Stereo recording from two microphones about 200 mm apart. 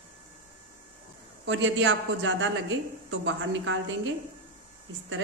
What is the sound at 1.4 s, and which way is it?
A woman's voice, 70° right (ahead or behind).